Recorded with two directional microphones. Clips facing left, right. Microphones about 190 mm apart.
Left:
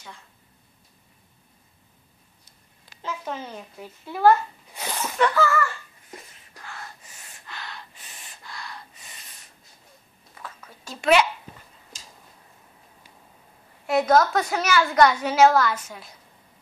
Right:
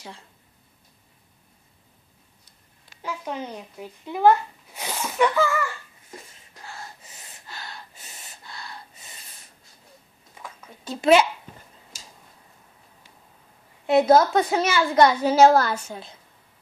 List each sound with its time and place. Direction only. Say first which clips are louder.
3.0 s speech: right 1 dB; 15° right (ahead or behind)
4.7 s laughter: right 1 dB; 10° right (ahead or behind)
6.6 s gasp: right 1 dB; 25° right (ahead or behind)
7.4 s gasp: left 1 dB; 40° right (ahead or behind)
8.5 s gasp: left 1 dB; 30° right (ahead or behind)
10.3 s a sound: even; 10° right (ahead or behind)
11.0 s a child's voice: right 2 dB; 30° right (ahead or behind)
13.8 s a woman's voice: right 3 dB; 25° right (ahead or behind)